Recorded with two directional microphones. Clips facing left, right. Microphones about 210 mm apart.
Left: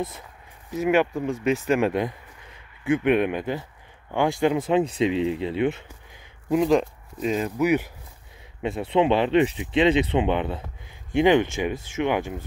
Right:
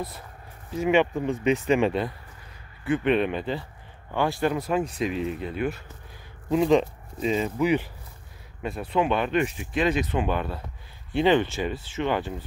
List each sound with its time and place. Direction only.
0.7 s speech: 5° left (ahead or behind); by 5.6 s 25° left (ahead or behind)
6.5 s speech: centre (ahead or behind)
8.6 s speech: 25° left (ahead or behind)